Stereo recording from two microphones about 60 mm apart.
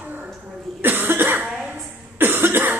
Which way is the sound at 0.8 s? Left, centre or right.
Right.